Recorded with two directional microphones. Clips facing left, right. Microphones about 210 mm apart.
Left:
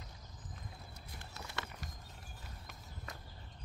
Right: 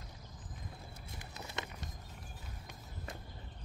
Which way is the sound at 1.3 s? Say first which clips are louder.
Right 2 dB; 20° right (ahead or behind).